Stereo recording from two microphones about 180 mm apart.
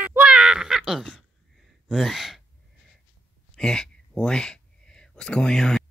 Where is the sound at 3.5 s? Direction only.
5° left (ahead or behind).